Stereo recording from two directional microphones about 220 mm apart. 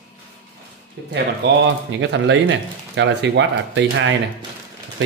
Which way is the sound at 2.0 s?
55° right (ahead or behind).